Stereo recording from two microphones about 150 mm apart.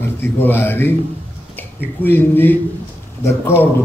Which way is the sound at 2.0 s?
15° left (ahead or behind).